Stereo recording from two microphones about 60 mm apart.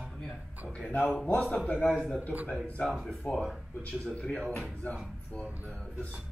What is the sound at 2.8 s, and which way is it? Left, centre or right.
Speech, centre.